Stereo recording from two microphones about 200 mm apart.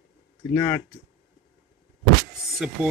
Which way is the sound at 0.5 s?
10° left (ahead or behind).